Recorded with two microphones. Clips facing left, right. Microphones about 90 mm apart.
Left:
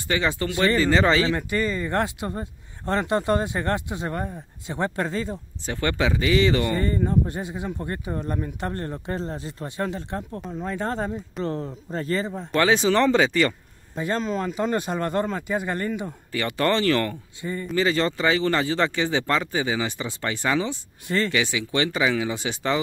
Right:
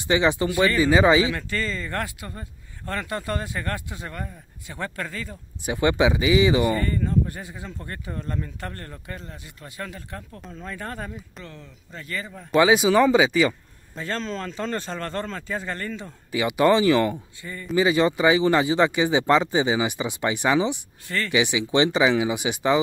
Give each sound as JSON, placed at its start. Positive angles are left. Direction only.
{"t": 0.1, "sound": "speech", "side_deg": -20}
{"t": 1.3, "sound": "speech", "side_deg": 15}
{"t": 5.7, "sound": "speech", "side_deg": -15}
{"t": 6.7, "sound": "speech", "side_deg": 20}
{"t": 11.4, "sound": "speech", "side_deg": 35}
{"t": 12.5, "sound": "speech", "side_deg": -10}
{"t": 13.9, "sound": "speech", "side_deg": 15}
{"t": 16.3, "sound": "speech", "side_deg": -10}
{"t": 17.4, "sound": "speech", "side_deg": 25}
{"t": 17.7, "sound": "speech", "side_deg": -15}